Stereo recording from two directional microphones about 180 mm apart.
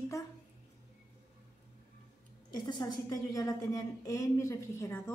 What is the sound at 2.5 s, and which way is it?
A woman's voice, 20° left (ahead or behind).